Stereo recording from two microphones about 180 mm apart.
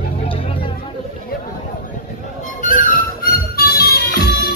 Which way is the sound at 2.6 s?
45° left (ahead or behind).